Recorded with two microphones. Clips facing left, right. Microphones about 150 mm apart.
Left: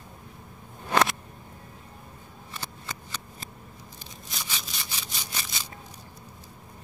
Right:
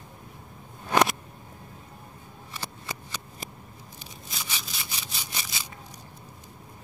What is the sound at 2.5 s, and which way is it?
Shuffling cards, 10° right (ahead or behind).